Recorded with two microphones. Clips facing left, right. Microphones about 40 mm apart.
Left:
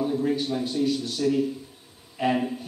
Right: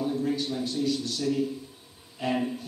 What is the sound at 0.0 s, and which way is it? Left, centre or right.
A man's voice, centre.